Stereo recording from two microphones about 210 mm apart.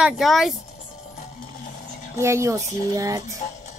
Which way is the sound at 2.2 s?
15° right (ahead or behind).